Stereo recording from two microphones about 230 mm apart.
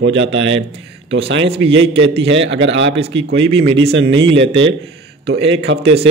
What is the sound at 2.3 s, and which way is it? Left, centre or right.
A man's voice, right.